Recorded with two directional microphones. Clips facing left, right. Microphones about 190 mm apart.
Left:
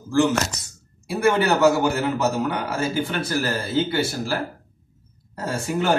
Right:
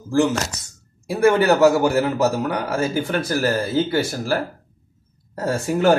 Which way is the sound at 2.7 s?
40° right (ahead or behind).